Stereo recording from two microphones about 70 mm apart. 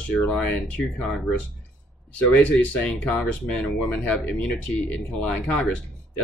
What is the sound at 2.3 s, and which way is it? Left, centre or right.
Speech, centre.